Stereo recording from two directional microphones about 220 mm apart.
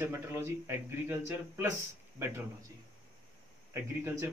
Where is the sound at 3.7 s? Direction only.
10° right (ahead or behind).